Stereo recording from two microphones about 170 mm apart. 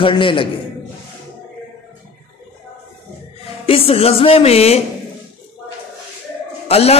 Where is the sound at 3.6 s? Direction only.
35° left (ahead or behind).